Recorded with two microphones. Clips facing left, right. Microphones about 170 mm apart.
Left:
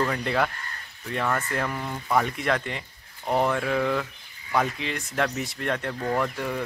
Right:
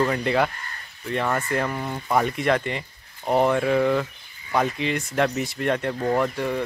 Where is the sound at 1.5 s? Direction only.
5° right (ahead or behind).